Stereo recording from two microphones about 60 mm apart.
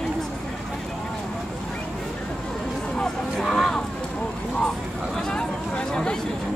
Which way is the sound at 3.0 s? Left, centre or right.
Centre.